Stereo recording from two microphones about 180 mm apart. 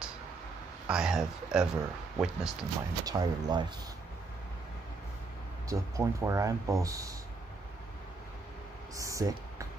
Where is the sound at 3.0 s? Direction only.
20° right (ahead or behind).